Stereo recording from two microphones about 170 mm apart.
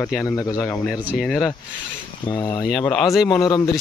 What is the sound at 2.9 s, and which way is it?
Speech, centre (ahead or behind).